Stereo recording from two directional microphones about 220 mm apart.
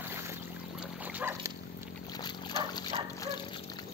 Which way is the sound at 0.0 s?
10° right (ahead or behind).